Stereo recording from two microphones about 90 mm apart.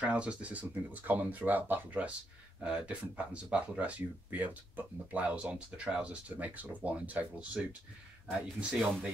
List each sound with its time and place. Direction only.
0.0 s speech: 10° right (ahead or behind)